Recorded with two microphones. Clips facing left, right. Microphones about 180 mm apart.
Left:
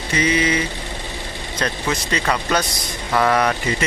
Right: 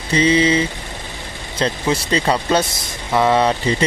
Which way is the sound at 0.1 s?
30° right (ahead or behind).